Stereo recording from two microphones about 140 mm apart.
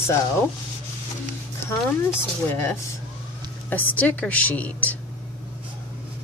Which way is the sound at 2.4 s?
15° left (ahead or behind).